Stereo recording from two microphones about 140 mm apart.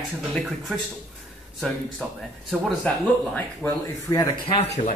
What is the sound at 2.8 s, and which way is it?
Speech, 10° left (ahead or behind).